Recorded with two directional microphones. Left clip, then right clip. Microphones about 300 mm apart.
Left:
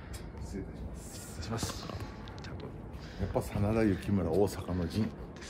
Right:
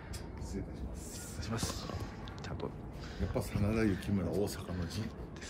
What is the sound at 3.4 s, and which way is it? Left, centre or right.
Speech, centre.